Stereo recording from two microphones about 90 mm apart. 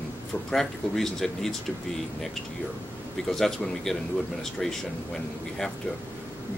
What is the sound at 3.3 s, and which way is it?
Speech, 5° left (ahead or behind).